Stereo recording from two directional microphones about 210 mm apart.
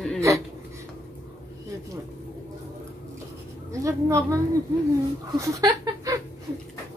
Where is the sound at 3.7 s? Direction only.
15° right (ahead or behind).